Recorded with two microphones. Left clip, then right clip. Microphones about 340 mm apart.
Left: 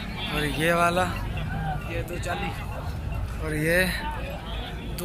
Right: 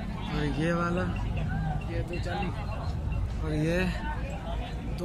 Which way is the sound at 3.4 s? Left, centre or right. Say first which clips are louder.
Left 6 dB; centre.